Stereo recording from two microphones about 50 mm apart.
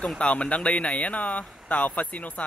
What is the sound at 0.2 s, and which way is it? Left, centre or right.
Speech, left.